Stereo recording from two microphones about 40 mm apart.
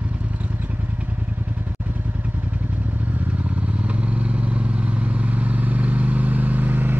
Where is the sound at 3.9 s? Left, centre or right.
Right.